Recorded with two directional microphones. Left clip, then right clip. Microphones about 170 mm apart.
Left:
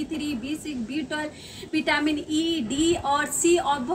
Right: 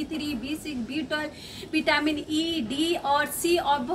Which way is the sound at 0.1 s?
5° left (ahead or behind).